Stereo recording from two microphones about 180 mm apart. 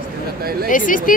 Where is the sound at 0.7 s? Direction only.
50° left (ahead or behind).